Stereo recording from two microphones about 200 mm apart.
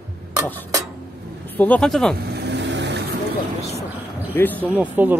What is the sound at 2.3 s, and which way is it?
Vehicle, 60° right (ahead or behind).